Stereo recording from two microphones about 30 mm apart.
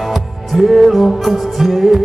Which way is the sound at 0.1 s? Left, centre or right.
Centre.